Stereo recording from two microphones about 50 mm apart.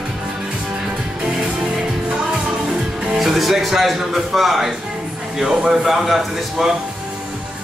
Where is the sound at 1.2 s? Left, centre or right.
Centre.